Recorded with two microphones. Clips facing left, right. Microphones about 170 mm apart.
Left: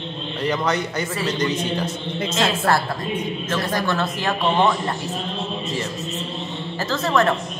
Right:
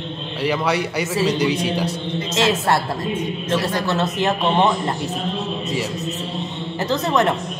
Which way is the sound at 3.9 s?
20° right (ahead or behind).